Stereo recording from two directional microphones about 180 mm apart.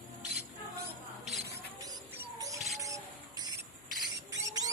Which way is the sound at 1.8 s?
20° right (ahead or behind).